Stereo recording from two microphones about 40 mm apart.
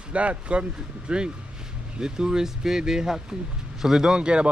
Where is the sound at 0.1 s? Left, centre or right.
Right; by 4.1 s centre.